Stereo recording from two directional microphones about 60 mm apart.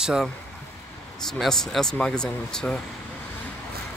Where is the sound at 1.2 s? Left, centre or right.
Centre.